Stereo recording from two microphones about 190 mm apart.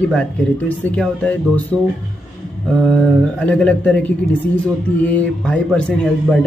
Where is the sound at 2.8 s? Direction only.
5° left (ahead or behind).